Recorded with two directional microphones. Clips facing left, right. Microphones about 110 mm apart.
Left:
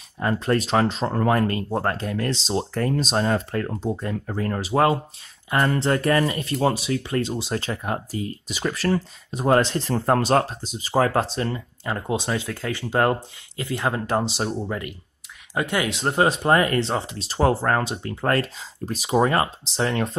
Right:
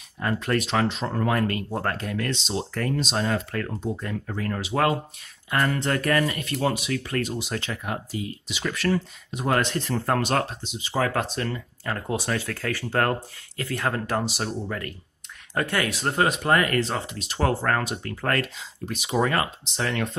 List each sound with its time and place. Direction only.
0.2 s speech: 30° left (ahead or behind)